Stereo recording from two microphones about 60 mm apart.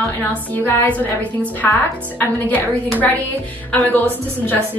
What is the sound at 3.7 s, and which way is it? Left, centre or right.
Speech, left.